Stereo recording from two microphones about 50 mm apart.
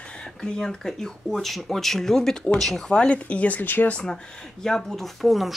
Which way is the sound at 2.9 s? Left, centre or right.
Left.